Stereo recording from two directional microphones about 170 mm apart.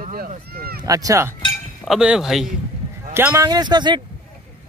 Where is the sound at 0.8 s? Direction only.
20° right (ahead or behind).